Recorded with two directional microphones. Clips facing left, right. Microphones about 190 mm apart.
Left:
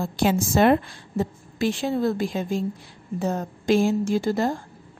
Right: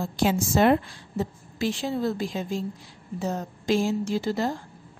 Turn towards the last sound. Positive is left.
turn(degrees=50)  # may be behind; listen again after turning